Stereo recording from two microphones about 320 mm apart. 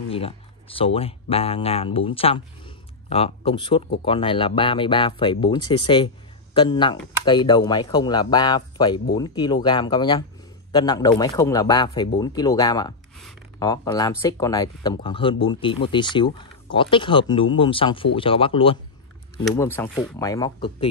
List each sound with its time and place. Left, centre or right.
0.1 s speech: centre